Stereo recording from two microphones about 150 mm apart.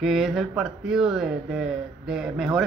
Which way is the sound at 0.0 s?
Centre (ahead or behind).